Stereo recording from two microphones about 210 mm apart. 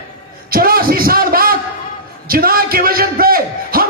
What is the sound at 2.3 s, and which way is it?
A man's voice, 45° right (ahead or behind).